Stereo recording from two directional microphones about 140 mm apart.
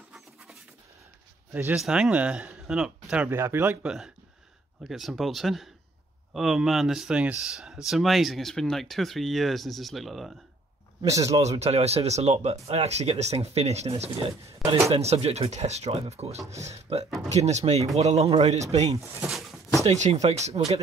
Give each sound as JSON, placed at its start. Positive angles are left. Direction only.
{"t": 1.5, "sound": "speech", "side_deg": -10}
{"t": 3.3, "sound": "speech", "side_deg": -20}
{"t": 3.8, "sound": "speech", "side_deg": -5}
{"t": 11.0, "sound": "speech", "side_deg": -20}
{"t": 11.6, "sound": "speech", "side_deg": -50}
{"t": 18.9, "sound": "speech", "side_deg": -20}
{"t": 19.2, "sound": "a sound", "side_deg": 0}
{"t": 19.8, "sound": "speech", "side_deg": -50}